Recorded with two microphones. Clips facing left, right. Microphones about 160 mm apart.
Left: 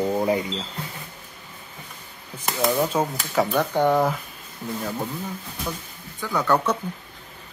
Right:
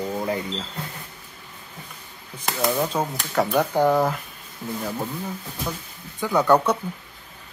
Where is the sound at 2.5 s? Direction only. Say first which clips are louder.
Left 1 dB; centre (ahead or behind).